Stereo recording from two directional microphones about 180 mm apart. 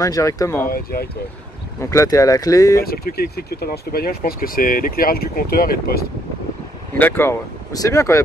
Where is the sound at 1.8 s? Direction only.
15° left (ahead or behind).